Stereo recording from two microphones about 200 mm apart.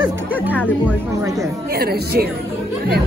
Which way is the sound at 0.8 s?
15° right (ahead or behind).